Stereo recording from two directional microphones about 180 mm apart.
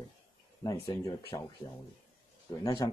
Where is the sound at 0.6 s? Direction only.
20° left (ahead or behind).